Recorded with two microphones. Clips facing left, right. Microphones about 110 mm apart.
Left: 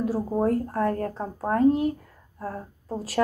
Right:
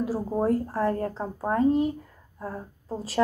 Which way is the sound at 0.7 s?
30° right (ahead or behind).